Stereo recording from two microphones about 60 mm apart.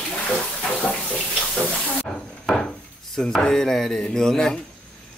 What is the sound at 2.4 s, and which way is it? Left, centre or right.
Wood, centre.